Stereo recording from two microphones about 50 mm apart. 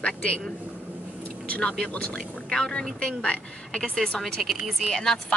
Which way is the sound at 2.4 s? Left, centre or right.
Centre.